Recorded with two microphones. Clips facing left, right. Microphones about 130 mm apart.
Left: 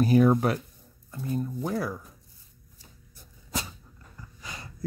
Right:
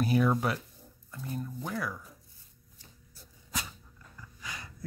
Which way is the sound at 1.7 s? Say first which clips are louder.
Left 4 dB; 35° left (ahead or behind).